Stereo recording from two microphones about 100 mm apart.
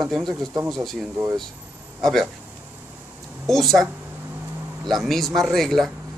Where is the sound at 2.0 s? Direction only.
Centre (ahead or behind).